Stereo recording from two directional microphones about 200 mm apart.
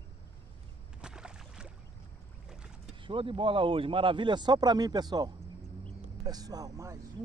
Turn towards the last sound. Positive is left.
turn(degrees=-15)  # may be behind; listen again after turning